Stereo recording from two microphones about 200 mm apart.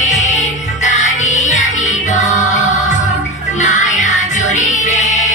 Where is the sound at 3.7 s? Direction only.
35° left (ahead or behind).